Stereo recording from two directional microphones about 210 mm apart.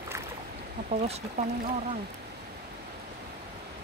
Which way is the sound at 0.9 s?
35° right (ahead or behind).